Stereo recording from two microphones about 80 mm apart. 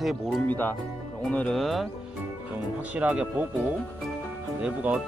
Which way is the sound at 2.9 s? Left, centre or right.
Centre.